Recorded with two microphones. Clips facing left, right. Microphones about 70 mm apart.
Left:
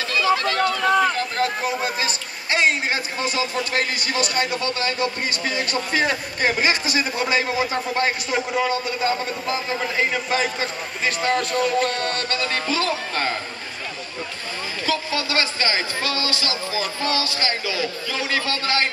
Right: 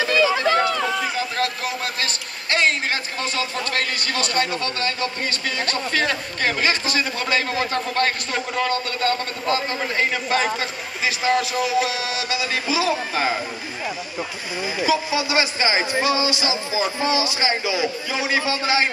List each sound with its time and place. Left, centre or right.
0.0 s a sound: right
1.0 s speech: centre
14.8 s speech: centre